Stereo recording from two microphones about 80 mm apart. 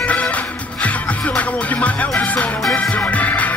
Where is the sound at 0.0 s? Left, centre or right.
Centre.